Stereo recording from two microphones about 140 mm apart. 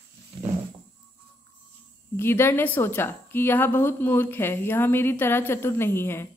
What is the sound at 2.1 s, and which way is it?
A woman's voice, 15° left (ahead or behind).